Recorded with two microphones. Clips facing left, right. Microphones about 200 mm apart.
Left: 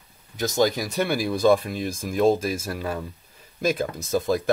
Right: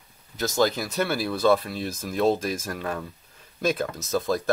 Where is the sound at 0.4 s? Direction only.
15° left (ahead or behind).